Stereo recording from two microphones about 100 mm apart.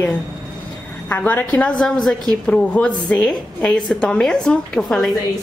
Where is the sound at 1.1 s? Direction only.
20° left (ahead or behind).